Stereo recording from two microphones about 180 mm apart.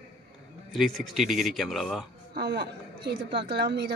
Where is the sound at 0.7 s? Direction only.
Centre (ahead or behind).